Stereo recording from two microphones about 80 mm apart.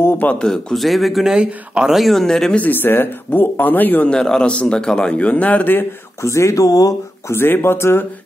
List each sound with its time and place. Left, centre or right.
0.0 s a man's voice: left
0.4 s speech: centre
1.3 s speech: centre
2.5 s speech: left
4.1 s a man's voice: centre; by 5.9 s left
6.2 s speech: left
7.3 s speech: left